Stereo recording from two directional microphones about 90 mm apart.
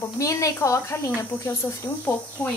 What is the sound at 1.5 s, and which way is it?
A woman's voice, 20° left (ahead or behind).